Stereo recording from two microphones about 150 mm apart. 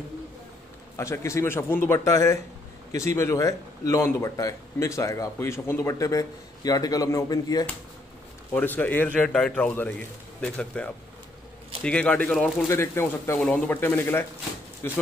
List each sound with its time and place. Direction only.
0.9 s speech: 20° left (ahead or behind)
8.5 s a man's voice: 10° left (ahead or behind)
12.6 s a man's voice: 15° left (ahead or behind)